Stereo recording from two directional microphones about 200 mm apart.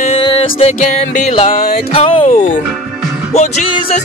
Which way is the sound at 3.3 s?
30° left (ahead or behind).